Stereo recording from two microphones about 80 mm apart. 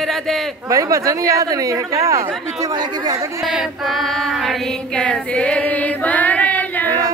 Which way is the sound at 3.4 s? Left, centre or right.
Centre.